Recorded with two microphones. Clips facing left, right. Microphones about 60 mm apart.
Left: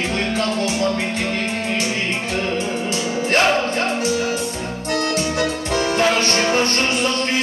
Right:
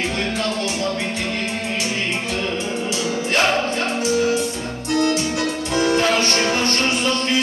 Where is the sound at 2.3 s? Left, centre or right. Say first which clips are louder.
Left 2 dB; left.